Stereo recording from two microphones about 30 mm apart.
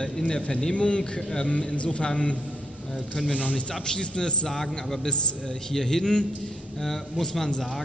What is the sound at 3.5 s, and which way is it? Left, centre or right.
Speech, left.